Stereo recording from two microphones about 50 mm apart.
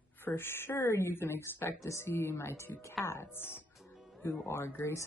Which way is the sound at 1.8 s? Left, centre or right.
Left.